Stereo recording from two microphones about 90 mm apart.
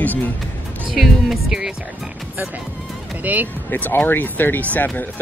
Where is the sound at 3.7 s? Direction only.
20° left (ahead or behind).